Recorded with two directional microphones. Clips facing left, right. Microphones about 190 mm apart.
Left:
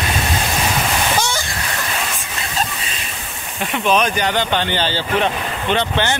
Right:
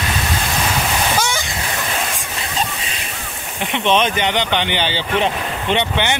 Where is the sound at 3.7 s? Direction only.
25° right (ahead or behind).